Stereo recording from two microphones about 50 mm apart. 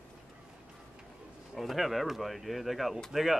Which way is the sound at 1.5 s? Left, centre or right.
Centre.